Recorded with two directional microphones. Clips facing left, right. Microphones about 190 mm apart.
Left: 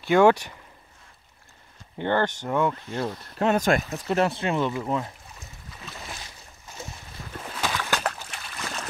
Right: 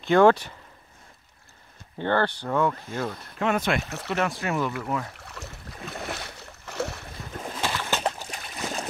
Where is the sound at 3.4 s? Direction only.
40° left (ahead or behind).